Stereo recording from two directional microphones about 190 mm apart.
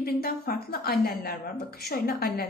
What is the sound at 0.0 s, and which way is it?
A woman's voice, 55° left (ahead or behind).